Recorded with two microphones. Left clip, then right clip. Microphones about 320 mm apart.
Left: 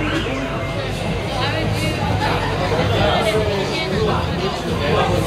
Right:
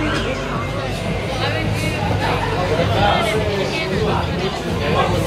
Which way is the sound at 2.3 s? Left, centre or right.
Centre.